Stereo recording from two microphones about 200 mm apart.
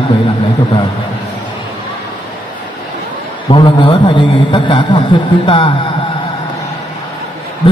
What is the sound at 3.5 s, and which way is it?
A man's voice, 25° left (ahead or behind).